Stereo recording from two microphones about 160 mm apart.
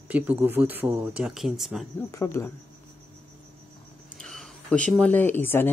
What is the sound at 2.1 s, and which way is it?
Speech, 20° left (ahead or behind).